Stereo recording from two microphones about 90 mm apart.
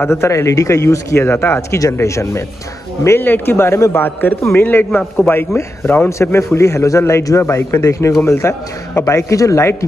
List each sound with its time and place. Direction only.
0.0 s a man's voice: 30° left (ahead or behind)
1.8 s a man's voice: 35° left (ahead or behind)